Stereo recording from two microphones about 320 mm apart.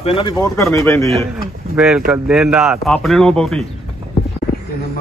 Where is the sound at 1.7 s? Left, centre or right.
Centre.